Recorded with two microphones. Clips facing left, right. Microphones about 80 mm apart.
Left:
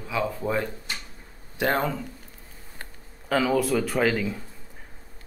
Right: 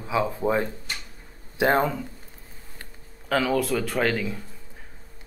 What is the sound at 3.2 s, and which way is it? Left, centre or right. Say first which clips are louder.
A man's voice: left 1 dB; centre.